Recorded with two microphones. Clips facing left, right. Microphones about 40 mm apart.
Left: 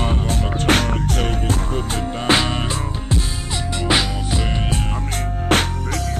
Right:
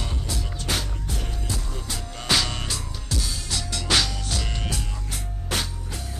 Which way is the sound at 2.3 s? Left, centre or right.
Left.